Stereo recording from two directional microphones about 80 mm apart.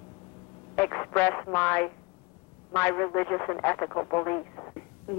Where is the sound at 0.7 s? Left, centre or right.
Left.